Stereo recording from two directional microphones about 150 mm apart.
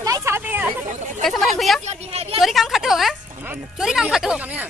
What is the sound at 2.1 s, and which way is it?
Speech, 40° right (ahead or behind).